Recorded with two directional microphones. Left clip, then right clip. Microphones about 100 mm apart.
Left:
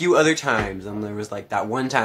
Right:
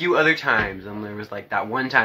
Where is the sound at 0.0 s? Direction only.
45° left (ahead or behind).